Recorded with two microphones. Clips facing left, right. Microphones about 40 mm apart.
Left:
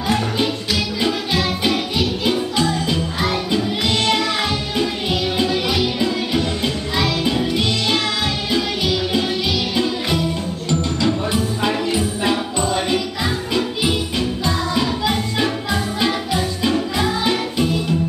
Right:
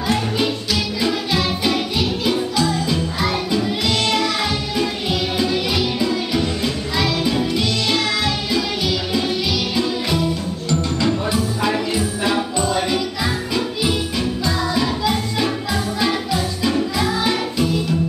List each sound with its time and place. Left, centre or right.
1.0 s music: left
3.5 s music: left
8.5 s music: left
11.9 s music: centre
14.1 s music: left